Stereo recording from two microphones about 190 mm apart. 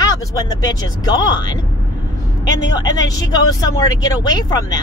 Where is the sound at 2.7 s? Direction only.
20° left (ahead or behind).